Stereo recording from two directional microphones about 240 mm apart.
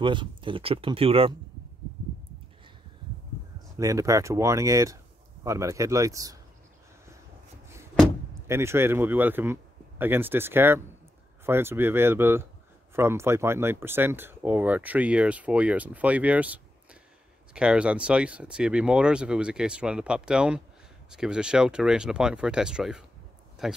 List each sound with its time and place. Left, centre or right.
0.0 s speech: centre
3.7 s speech: centre
8.5 s speech: centre